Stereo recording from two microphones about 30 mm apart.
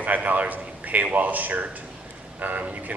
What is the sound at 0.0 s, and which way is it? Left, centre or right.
A man's voice, right.